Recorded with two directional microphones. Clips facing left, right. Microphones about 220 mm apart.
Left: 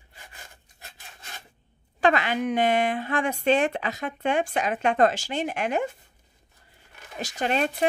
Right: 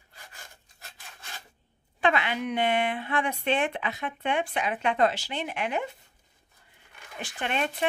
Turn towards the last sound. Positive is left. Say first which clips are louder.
# left 5 dB
turn(degrees=40)  # may be behind; listen again after turning